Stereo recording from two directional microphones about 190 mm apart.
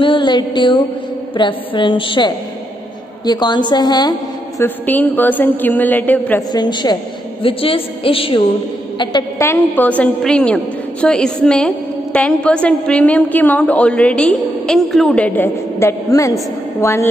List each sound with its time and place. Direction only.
0.0 s a woman's voice: 25° left (ahead or behind)
4.6 s a woman's voice: 10° left (ahead or behind)
6.5 s a woman's voice: 20° left (ahead or behind)
9.4 s a woman's voice: 10° left (ahead or behind)